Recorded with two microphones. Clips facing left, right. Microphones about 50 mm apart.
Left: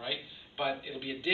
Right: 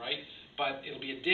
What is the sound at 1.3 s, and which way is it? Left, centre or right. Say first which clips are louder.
Speech: right 1 dB; right.